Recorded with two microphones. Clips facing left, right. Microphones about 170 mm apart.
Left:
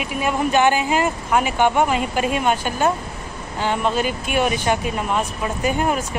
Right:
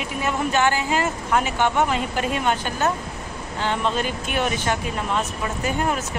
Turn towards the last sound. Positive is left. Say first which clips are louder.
# left 3 dB
turn(degrees=15)  # may be behind; listen again after turning